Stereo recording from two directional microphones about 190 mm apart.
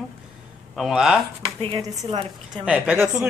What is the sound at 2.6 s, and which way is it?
Speech, 5° right (ahead or behind).